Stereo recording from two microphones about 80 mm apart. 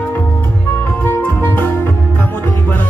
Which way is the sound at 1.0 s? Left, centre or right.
Left.